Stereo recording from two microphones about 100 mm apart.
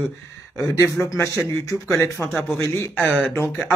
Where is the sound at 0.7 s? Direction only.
30° left (ahead or behind).